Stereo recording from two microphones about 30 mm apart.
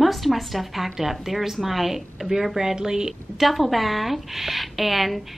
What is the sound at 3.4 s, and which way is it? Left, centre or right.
Speech, centre.